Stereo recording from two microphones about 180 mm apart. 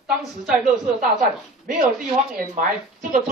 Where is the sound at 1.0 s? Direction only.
50° right (ahead or behind).